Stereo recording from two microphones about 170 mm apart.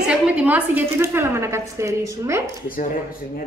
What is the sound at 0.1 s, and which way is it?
A woman's voice, 5° right (ahead or behind).